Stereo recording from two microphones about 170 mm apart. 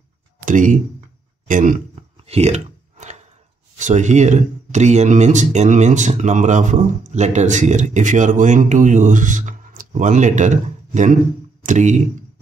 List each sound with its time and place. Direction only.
0.5 s speech: 50° right (ahead or behind)
2.2 s clicking: 40° right (ahead or behind)
3.7 s speech: 45° right (ahead or behind)